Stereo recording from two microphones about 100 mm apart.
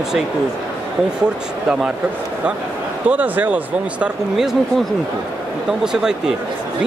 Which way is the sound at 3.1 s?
15° right (ahead or behind).